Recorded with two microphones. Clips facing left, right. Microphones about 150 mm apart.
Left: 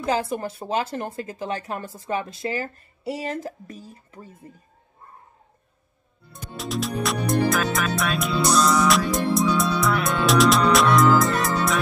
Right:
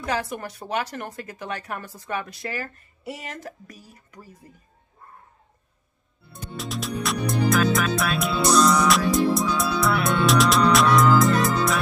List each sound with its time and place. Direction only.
0.0 s a woman's voice: 25° left (ahead or behind)
6.3 s music: centre (ahead or behind)